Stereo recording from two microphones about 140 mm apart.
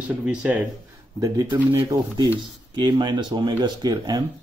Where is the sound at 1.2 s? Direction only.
25° right (ahead or behind).